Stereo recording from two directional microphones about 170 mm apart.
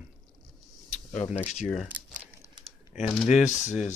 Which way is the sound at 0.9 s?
40° left (ahead or behind).